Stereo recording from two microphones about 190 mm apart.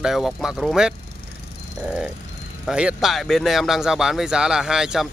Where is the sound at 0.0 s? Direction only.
Centre (ahead or behind).